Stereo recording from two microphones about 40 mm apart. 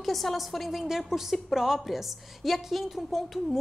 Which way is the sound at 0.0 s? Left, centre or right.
Centre.